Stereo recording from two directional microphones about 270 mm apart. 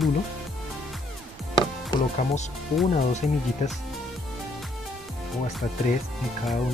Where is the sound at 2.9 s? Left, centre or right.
Left.